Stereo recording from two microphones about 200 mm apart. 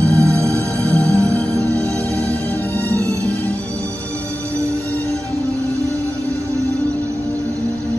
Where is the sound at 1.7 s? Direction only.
15° right (ahead or behind).